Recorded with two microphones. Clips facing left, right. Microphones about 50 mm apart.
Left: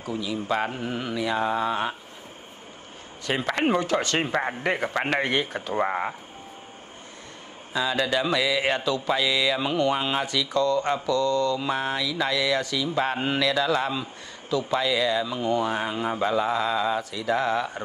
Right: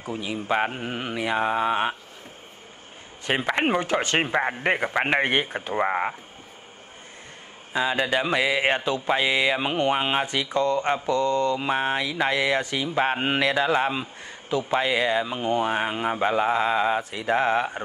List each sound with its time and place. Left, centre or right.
0.0 s speech: right
3.3 s speech: right
7.7 s a sound: right